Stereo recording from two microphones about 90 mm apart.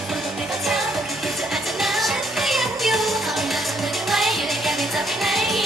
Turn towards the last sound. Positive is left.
turn(degrees=0)  # may be behind; listen again after turning